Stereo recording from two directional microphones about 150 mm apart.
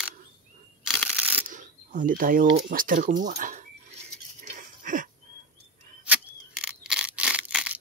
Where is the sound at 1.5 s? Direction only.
60° right (ahead or behind).